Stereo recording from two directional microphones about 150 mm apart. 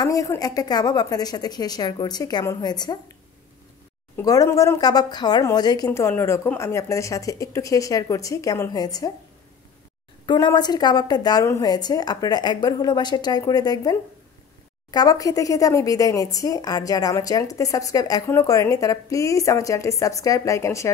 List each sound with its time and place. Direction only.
0.0 s speech: 25° left (ahead or behind)
4.2 s speech: 25° left (ahead or behind)
10.2 s speech: 30° left (ahead or behind)